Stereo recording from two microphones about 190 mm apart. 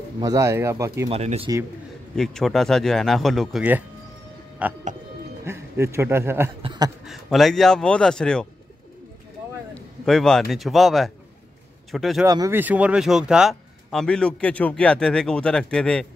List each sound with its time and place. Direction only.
0.2 s speech: 15° right (ahead or behind)
1.1 s speech: 30° right (ahead or behind)
2.1 s speech: centre (ahead or behind)
6.6 s a sound: 25° right (ahead or behind)
7.1 s speech: centre (ahead or behind)
10.0 s speech: 5° left (ahead or behind)
12.3 s speech: 15° right (ahead or behind); by 16.1 s 5° left (ahead or behind)